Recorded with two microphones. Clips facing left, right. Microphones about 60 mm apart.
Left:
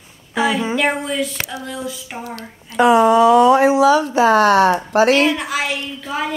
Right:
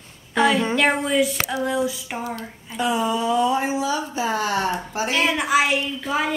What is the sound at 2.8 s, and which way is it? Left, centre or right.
Speech, left.